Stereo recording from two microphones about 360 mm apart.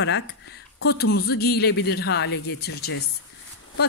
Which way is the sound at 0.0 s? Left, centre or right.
Left.